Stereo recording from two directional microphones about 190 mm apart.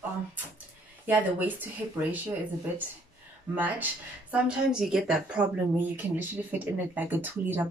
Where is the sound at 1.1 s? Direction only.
10° right (ahead or behind).